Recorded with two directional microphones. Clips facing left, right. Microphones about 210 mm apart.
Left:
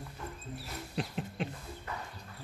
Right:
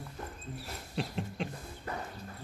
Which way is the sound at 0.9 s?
Centre (ahead or behind).